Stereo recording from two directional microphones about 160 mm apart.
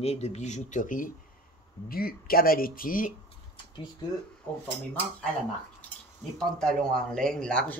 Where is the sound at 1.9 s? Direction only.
70° left (ahead or behind).